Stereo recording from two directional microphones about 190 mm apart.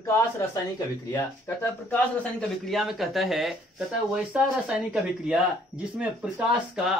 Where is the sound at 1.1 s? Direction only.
10° left (ahead or behind).